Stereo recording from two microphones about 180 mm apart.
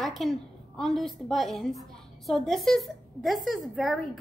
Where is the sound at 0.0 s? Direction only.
Centre (ahead or behind).